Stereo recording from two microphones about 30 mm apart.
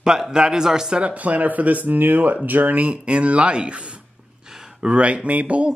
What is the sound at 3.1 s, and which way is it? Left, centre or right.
Speech, right.